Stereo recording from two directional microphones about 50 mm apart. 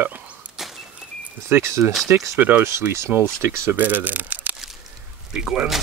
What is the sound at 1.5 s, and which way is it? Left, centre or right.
Speech, right.